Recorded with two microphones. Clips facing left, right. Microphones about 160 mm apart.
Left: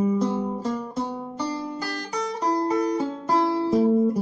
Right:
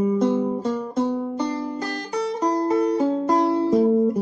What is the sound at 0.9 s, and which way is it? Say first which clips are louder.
Music: right 7 dB; 50° right (ahead or behind).